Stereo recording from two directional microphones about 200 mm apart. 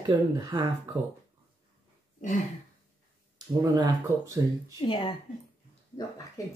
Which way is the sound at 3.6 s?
20° right (ahead or behind).